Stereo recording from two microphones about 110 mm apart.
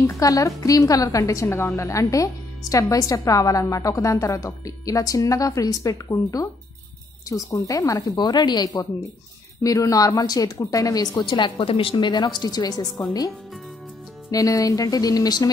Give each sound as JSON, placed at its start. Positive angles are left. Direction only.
{"t": 0.0, "sound": "a woman's voice", "side_deg": 30}
{"t": 14.3, "sound": "speech", "side_deg": 30}